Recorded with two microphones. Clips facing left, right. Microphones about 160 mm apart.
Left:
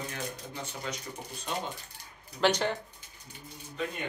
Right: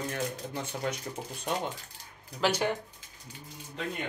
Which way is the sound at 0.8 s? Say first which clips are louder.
Right 5 dB; 55° right (ahead or behind).